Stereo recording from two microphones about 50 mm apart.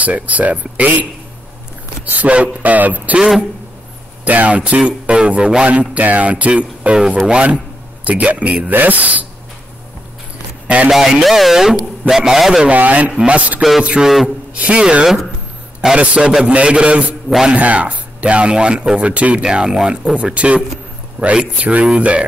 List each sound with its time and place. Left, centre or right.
0.0 s speech: right
2.0 s speech: right
4.2 s speech: right
5.7 s speech: right
10.9 s speech: centre
12.6 s speech: right
13.6 s music: centre
14.0 s a man's voice: centre
14.5 s speech: right
15.8 s speech: centre
16.4 s speech: right
20.2 s speech: right